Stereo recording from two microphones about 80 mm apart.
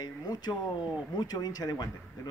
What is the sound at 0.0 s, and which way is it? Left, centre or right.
Speech, left.